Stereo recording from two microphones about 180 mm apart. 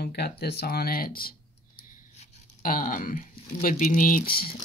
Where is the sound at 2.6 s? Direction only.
50° left (ahead or behind).